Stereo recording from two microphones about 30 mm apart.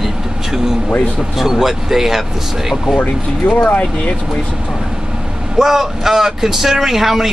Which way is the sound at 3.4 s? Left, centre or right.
Left.